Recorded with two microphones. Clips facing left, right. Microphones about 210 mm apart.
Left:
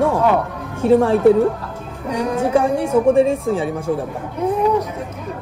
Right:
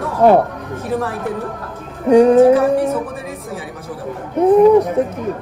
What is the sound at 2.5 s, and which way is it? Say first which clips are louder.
Speech: right 2 dB; 30° left (ahead or behind).